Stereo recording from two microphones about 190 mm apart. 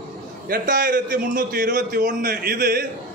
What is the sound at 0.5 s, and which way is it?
A man's voice, 45° right (ahead or behind).